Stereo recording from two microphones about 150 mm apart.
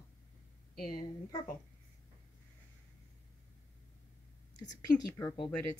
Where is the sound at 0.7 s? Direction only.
75° left (ahead or behind).